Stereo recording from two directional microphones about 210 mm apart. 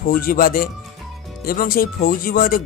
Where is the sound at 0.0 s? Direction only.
40° left (ahead or behind).